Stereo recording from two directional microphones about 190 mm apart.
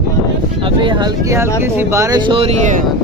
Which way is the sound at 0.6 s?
25° right (ahead or behind).